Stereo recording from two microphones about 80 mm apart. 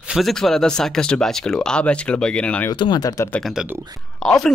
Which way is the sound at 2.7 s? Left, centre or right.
Left.